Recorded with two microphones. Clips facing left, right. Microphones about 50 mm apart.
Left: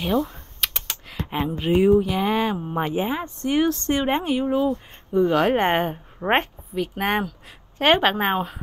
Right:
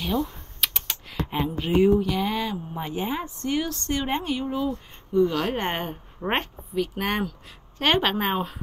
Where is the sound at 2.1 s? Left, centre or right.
Left.